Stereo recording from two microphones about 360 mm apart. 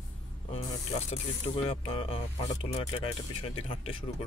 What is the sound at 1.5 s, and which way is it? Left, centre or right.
Speech, centre.